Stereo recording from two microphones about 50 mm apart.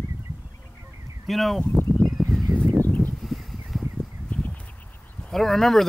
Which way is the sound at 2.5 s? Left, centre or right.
Right.